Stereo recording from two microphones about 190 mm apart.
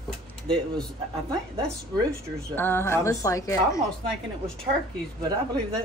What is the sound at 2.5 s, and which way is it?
A woman's voice, 10° left (ahead or behind).